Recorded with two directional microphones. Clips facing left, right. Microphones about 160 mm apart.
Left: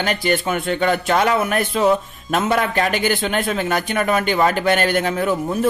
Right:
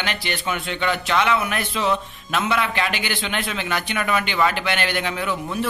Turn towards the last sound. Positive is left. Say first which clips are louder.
# left 6 dB
turn(degrees=45)  # may be behind; listen again after turning